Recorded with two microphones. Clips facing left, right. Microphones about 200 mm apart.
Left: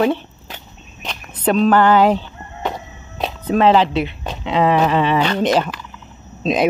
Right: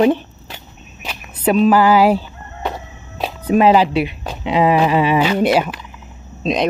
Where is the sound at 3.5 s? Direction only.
10° right (ahead or behind).